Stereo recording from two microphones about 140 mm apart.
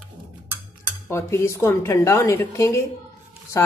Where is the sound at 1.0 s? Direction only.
20° left (ahead or behind).